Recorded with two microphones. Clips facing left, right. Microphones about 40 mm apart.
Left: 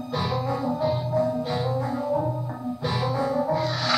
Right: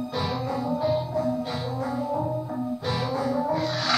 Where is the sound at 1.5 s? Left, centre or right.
Centre.